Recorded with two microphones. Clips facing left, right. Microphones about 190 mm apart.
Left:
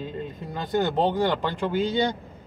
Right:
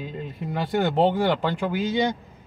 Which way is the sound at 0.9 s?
15° right (ahead or behind).